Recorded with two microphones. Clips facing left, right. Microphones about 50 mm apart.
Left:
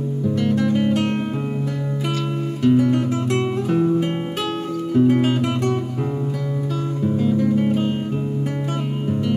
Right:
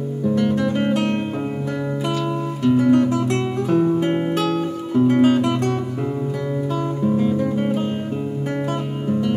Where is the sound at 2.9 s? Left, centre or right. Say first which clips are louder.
Right 3 dB; centre.